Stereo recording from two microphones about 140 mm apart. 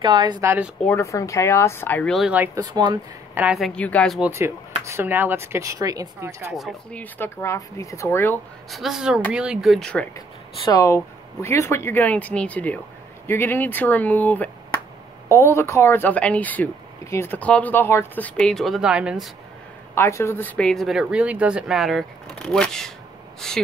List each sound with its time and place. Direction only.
0.0 s speech: 30° right (ahead or behind)
0.4 s speech: 20° right (ahead or behind)
0.8 s speech: 20° left (ahead or behind)
2.1 s speech: 5° right (ahead or behind)
2.6 s speech: 30° right (ahead or behind)
3.5 s speech: centre (ahead or behind)
4.2 s speech: 20° right (ahead or behind)
6.5 s speech: centre (ahead or behind)
7.0 s speech: 15° left (ahead or behind)
8.6 s speech: centre (ahead or behind)
10.6 s speech: 25° left (ahead or behind); by 19.3 s 5° right (ahead or behind)
20.0 s speech: 20° left (ahead or behind); by 23.6 s 5° left (ahead or behind)